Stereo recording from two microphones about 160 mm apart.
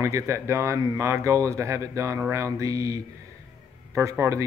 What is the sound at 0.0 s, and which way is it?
Speech, 20° right (ahead or behind).